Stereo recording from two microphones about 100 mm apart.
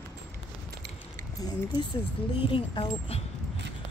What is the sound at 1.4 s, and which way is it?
Speech, 50° left (ahead or behind).